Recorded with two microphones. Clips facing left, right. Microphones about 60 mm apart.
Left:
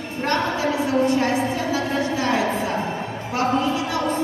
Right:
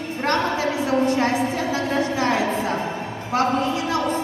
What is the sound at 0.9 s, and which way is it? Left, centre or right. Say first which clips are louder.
Speech: right 1 dB; right.